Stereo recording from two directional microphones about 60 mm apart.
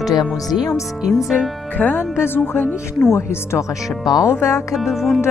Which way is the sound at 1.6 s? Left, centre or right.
Left.